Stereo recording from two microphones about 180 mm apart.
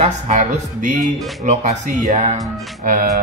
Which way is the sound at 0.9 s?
Centre (ahead or behind).